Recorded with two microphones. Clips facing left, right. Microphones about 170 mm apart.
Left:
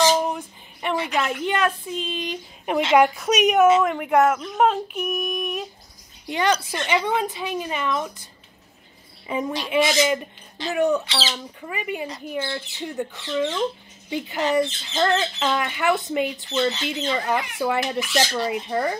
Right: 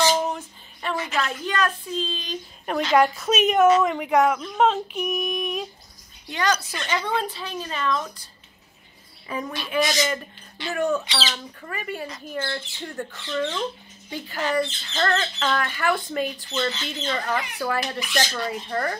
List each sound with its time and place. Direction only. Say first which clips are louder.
0.0 s a sound: left 2 dB; 10° left (ahead or behind)
1.4 s speech: left 3 dB; 25° left (ahead or behind)
3.2 s speech: left 2 dB; 10° left (ahead or behind)
6.2 s speech: left 3 dB; 25° left (ahead or behind)
6.9 s speech: left 3 dB; 15° left (ahead or behind)
9.3 s speech: left 4 dB; 20° left (ahead or behind)